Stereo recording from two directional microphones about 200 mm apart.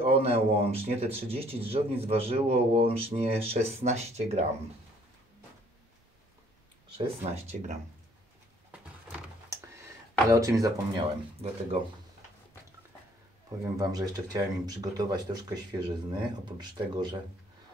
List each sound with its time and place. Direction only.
0.0 s speech: 30° right (ahead or behind)
7.0 s speech: 35° right (ahead or behind)
8.7 s a sound: 10° right (ahead or behind)
10.3 s speech: 15° right (ahead or behind)
11.4 s speech: 30° right (ahead or behind)
13.7 s speech: 20° right (ahead or behind)